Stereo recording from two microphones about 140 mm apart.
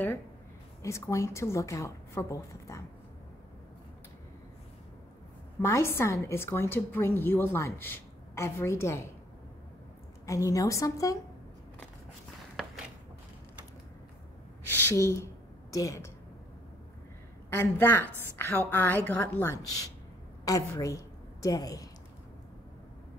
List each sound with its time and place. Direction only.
0.8 s a woman's voice: 20° left (ahead or behind)
5.6 s a woman's voice: 20° left (ahead or behind)
10.2 s a woman's voice: 25° left (ahead or behind)
14.7 s a woman's voice: 15° left (ahead or behind)
17.5 s a woman's voice: 15° left (ahead or behind)